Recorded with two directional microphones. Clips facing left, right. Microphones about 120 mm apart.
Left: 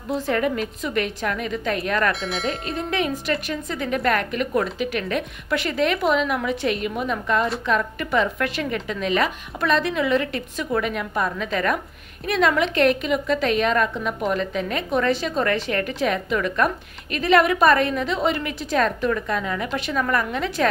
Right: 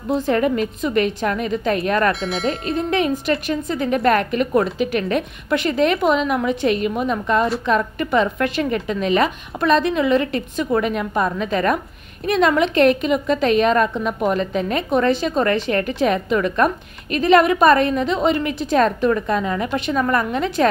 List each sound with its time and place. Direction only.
0.1 s a woman's voice: 35° right (ahead or behind)
2.2 s speech: centre (ahead or behind)
2.7 s a woman's voice: 35° right (ahead or behind)